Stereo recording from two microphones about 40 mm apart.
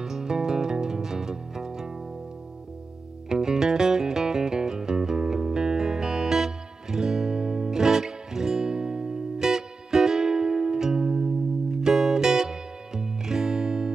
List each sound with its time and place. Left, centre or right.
0.0 s music: centre
3.3 s music: centre